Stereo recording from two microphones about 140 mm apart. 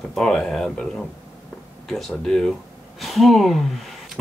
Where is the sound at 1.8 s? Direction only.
Centre (ahead or behind).